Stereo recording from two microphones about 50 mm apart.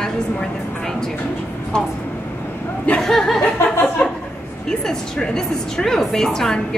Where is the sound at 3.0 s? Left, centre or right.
Centre.